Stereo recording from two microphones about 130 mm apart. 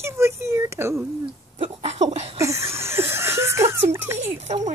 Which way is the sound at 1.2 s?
50° right (ahead or behind).